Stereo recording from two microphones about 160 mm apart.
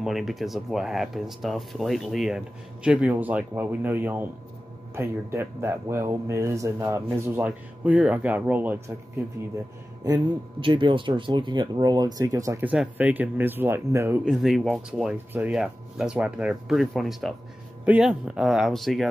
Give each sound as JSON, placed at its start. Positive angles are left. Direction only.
{"t": 0.0, "sound": "speech", "side_deg": 0}
{"t": 10.0, "sound": "speech", "side_deg": -25}
{"t": 14.2, "sound": "speech", "side_deg": -5}